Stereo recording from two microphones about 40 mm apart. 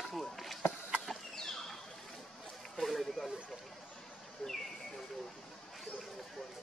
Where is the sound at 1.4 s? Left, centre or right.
Centre.